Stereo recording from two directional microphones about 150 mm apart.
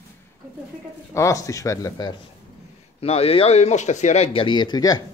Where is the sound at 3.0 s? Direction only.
40° left (ahead or behind).